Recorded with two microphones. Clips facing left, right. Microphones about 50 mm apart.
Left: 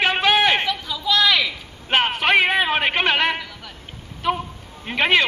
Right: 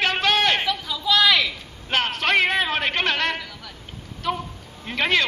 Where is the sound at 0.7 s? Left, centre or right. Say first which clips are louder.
Even; centre.